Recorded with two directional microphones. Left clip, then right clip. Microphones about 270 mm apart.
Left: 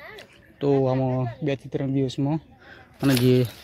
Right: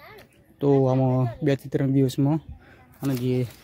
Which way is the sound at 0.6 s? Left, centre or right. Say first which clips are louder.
Right 1 dB; centre.